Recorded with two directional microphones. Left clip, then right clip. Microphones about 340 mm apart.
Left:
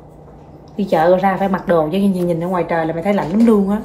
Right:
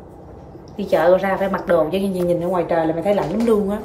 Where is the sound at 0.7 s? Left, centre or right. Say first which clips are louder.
Left 2 dB; centre.